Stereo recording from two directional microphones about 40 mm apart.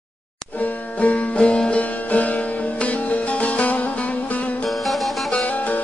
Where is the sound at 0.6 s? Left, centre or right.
Left.